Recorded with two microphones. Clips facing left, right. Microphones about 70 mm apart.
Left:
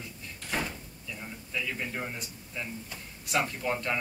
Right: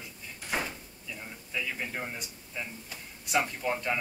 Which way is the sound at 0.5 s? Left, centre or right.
Centre.